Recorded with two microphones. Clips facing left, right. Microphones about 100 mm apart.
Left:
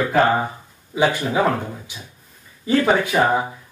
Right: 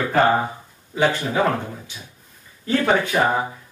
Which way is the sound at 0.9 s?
10° left (ahead or behind).